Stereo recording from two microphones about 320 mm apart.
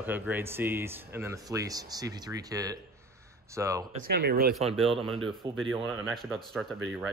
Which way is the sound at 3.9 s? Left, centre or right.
Right.